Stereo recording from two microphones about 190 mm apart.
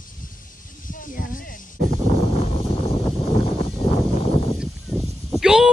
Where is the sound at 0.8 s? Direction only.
45° left (ahead or behind).